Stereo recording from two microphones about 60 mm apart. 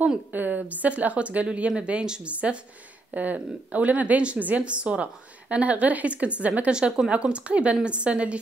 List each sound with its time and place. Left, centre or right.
0.3 s a woman's voice: right